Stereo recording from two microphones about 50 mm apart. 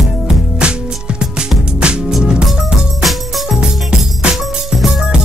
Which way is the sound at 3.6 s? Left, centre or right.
Centre.